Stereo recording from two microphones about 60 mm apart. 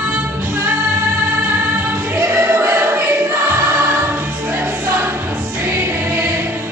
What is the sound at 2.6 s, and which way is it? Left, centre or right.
Choir, right.